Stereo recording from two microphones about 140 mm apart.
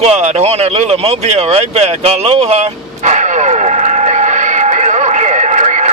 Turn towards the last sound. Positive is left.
turn(degrees=-55)  # may be behind; listen again after turning